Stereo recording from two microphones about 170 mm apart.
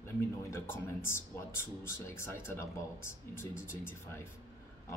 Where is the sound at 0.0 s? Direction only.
15° left (ahead or behind).